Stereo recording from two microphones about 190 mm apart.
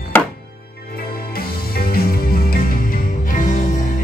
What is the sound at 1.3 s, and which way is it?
Music, 55° left (ahead or behind).